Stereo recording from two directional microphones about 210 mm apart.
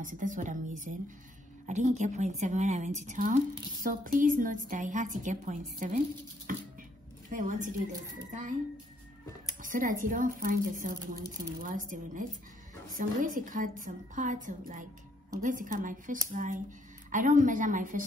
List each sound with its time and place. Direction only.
0.0 s a woman's voice: 35° right (ahead or behind)